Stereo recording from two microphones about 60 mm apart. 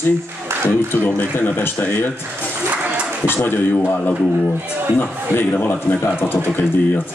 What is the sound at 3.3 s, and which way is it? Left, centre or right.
Speech, left.